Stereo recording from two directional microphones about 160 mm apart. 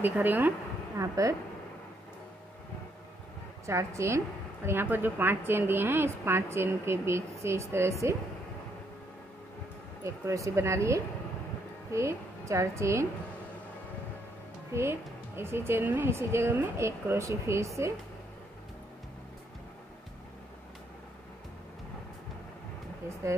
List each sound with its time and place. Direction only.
0.0 s a woman's voice: 10° right (ahead or behind)
3.6 s a woman's voice: 15° right (ahead or behind)
10.0 s a woman's voice: 20° right (ahead or behind)
14.7 s a woman's voice: 15° right (ahead or behind)